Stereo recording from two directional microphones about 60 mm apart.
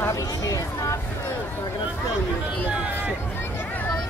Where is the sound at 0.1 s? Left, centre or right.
Left.